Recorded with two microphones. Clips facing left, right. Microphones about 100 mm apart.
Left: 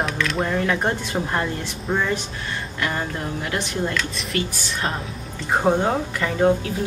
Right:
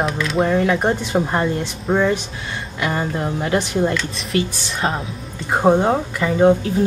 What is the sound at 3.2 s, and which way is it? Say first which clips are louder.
Speech: right 6 dB; 30° right (ahead or behind).